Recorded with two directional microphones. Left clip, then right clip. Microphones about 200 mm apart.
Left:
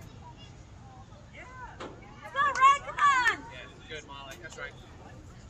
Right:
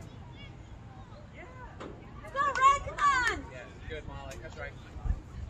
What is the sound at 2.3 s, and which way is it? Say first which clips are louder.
Vehicle: left 2 dB; 55° right (ahead or behind).